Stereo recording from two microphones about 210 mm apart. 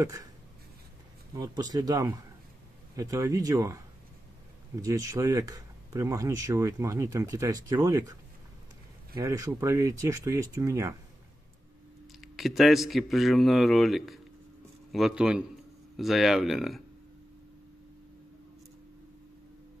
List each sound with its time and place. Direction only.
0.0 s speech: 15° right (ahead or behind)
1.3 s speech: 20° right (ahead or behind)
4.8 s speech: 15° right (ahead or behind)
9.2 s speech: 15° right (ahead or behind)
12.2 s speech: centre (ahead or behind)